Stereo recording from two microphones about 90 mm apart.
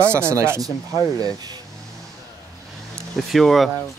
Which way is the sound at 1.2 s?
45° right (ahead or behind).